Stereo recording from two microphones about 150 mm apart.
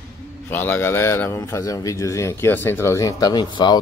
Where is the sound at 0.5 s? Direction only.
15° left (ahead or behind).